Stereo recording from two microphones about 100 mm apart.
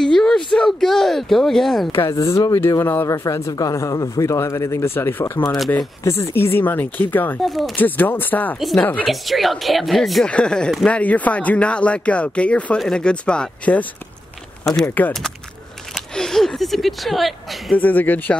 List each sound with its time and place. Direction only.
0.0 s a sound: 5° left (ahead or behind)
2.0 s speech: 30° left (ahead or behind)
2.8 s speech: 20° left (ahead or behind)
3.1 s speech: 30° left (ahead or behind)
7.4 s speech: centre (ahead or behind)
7.7 s speech: 20° left (ahead or behind)
9.0 s speech: centre (ahead or behind)
14.9 s speech: 15° left (ahead or behind)
15.9 s a woman's voice: 5° left (ahead or behind)
17.7 s speech: 15° left (ahead or behind)